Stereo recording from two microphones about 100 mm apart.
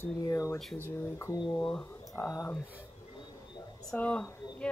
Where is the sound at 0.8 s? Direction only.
30° left (ahead or behind).